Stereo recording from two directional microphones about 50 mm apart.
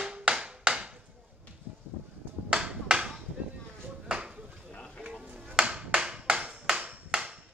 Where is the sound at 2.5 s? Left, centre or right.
Centre.